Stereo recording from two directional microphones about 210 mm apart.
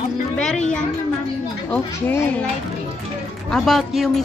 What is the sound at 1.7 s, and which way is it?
Speech, 10° left (ahead or behind).